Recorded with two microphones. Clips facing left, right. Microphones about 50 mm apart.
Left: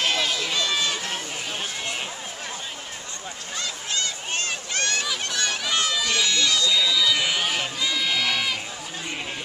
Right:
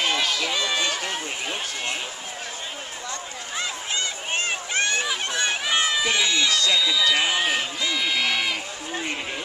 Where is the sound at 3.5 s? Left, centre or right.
Centre.